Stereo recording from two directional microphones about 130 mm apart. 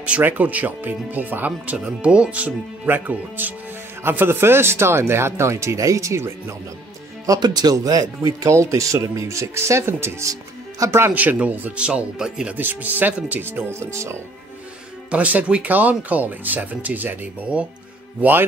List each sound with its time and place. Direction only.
0.0 s speech: 10° right (ahead or behind)
7.2 s speech: 35° right (ahead or behind)
15.0 s speech: 10° right (ahead or behind)